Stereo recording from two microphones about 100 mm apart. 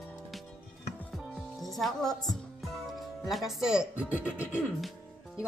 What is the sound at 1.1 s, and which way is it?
Music, centre (ahead or behind).